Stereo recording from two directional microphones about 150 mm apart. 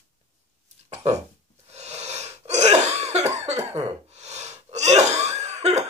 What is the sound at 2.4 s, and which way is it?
Cough, 50° right (ahead or behind).